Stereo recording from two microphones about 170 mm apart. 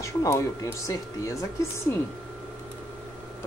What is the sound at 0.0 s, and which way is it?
Speech, 20° left (ahead or behind).